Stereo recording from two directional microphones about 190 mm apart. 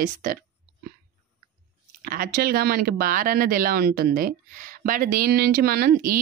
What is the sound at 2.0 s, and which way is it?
Speech, 55° right (ahead or behind).